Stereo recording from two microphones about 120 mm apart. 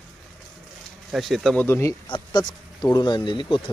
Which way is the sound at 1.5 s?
20° left (ahead or behind).